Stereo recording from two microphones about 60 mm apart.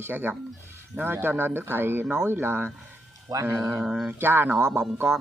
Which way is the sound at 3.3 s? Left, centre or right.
Right.